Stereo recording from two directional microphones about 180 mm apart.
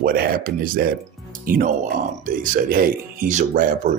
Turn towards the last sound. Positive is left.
turn(degrees=-45)  # may be behind; listen again after turning